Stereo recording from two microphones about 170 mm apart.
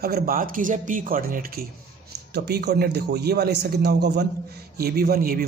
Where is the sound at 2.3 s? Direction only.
70° right (ahead or behind).